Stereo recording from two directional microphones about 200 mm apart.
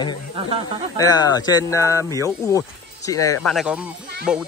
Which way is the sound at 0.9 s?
20° left (ahead or behind).